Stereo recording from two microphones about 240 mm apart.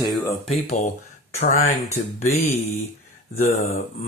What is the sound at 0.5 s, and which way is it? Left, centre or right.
Speech, left.